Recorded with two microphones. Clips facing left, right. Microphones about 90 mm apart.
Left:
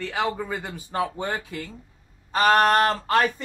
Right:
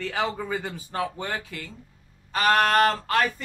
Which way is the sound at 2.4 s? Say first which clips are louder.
Left 2 dB; 25° left (ahead or behind).